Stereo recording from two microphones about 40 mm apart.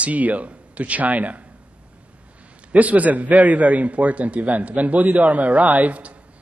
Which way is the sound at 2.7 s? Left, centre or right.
Right.